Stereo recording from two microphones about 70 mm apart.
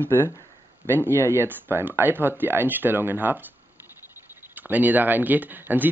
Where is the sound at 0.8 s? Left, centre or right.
Right.